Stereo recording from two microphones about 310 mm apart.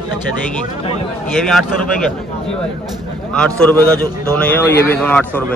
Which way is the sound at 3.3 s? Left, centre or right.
Centre.